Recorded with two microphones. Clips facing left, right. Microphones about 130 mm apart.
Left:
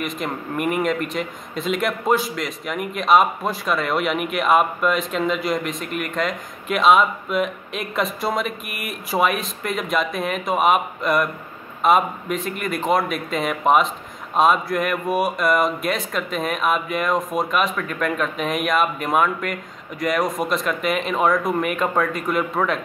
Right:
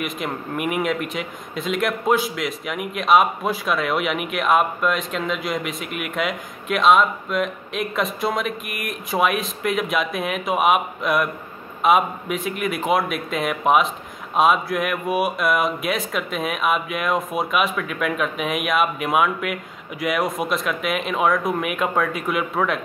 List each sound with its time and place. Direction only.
0.0 s speech: centre (ahead or behind)